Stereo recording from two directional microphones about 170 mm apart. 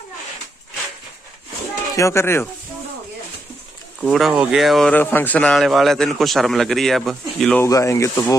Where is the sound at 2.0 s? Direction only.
15° left (ahead or behind).